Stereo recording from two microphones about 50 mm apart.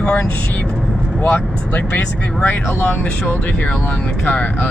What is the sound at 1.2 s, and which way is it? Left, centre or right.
Speech, left.